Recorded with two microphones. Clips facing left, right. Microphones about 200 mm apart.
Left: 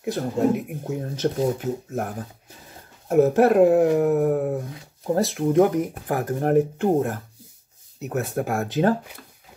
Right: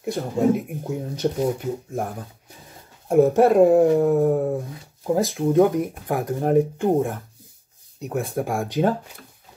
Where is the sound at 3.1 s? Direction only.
5° left (ahead or behind).